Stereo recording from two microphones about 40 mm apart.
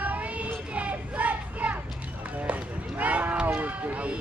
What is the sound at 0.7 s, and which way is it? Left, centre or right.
Children playing, right.